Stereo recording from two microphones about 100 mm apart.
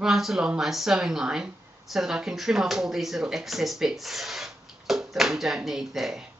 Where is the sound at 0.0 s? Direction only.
5° right (ahead or behind).